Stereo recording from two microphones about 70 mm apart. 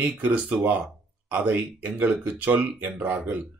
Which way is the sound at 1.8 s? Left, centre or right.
Right.